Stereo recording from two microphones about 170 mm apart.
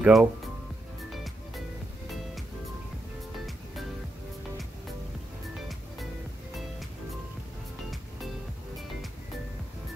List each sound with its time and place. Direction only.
0.0 s speech: 5° right (ahead or behind)
1.1 s music: centre (ahead or behind)